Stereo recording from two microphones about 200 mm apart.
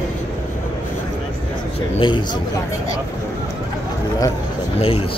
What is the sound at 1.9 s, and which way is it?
Speech, 25° left (ahead or behind).